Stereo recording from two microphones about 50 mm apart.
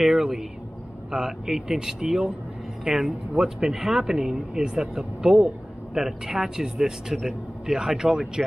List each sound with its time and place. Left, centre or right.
0.0 s speech: centre